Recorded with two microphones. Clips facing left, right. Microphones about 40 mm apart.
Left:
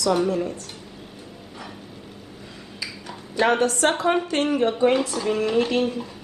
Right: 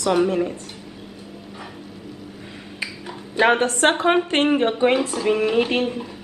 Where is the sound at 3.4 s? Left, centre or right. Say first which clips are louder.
Right 2 dB; right.